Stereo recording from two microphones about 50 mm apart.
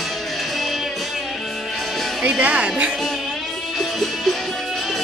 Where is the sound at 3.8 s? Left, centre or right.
Centre.